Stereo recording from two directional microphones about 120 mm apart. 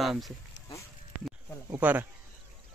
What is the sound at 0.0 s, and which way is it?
Speech, centre (ahead or behind).